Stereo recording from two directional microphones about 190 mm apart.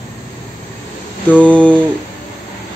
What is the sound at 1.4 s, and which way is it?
Speech, 5° left (ahead or behind).